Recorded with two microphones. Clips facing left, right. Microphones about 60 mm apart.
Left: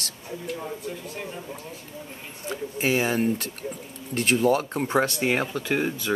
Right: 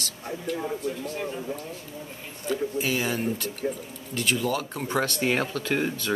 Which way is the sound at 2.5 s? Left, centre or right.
Left.